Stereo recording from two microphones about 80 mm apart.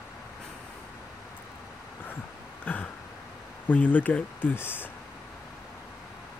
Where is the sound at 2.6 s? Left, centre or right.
Left.